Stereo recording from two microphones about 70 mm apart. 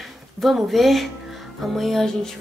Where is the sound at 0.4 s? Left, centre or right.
Centre.